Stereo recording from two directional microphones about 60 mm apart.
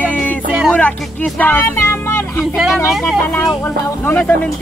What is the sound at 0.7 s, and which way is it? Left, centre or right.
Music, left.